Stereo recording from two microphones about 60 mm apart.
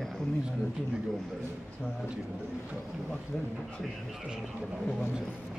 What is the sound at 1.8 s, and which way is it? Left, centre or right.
Speech, centre.